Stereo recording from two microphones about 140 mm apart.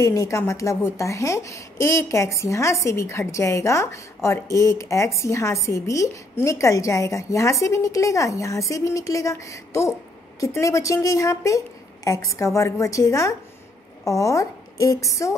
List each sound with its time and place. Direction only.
0.0 s a woman's voice: 20° left (ahead or behind)